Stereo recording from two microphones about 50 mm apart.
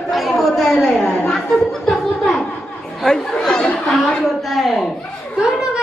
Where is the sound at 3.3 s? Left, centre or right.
Centre.